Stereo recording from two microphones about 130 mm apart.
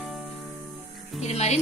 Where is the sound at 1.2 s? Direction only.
55° left (ahead or behind).